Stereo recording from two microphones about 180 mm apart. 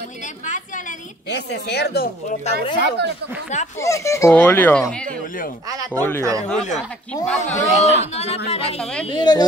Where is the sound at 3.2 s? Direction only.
70° right (ahead or behind).